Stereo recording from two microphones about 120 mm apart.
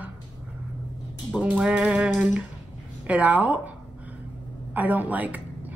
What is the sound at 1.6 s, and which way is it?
A woman's voice, 10° right (ahead or behind).